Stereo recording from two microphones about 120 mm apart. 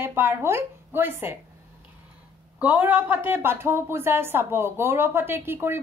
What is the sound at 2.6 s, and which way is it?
Speech, 15° right (ahead or behind).